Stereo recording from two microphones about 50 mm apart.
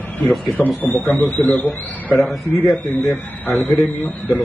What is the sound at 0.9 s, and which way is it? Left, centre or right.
Speech, left.